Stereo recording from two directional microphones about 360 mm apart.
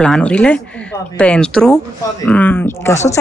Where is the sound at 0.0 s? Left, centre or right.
Centre.